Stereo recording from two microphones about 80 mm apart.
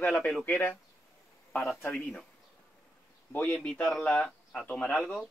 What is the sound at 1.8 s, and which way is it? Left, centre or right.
Speech, centre.